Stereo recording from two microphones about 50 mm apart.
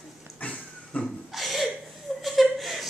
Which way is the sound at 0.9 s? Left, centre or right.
Left.